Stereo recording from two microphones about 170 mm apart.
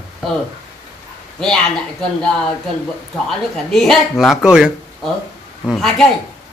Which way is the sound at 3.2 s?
Centre (ahead or behind).